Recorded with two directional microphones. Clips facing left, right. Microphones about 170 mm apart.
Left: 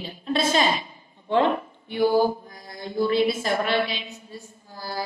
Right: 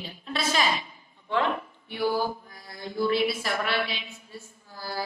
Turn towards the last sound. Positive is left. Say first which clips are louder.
# left 2 dB
turn(degrees=15)  # may be behind; listen again after turning